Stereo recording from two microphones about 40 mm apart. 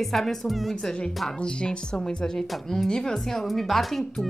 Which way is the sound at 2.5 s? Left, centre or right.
Centre.